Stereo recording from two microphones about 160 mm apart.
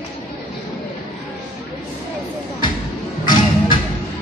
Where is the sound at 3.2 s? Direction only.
30° left (ahead or behind).